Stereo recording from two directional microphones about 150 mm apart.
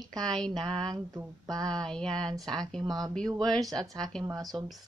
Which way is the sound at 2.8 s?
25° right (ahead or behind).